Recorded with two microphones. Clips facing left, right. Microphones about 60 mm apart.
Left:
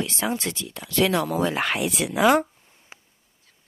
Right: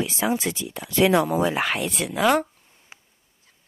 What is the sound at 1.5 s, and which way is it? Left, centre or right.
Speech, centre.